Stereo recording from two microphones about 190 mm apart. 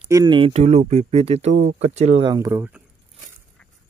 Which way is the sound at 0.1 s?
25° right (ahead or behind).